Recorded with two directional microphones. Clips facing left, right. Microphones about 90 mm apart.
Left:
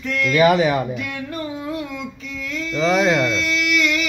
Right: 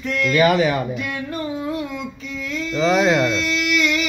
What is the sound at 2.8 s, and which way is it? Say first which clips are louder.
Speech: right 1 dB; 10° right (ahead or behind).